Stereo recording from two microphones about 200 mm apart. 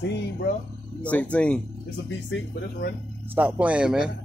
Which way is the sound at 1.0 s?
5° left (ahead or behind).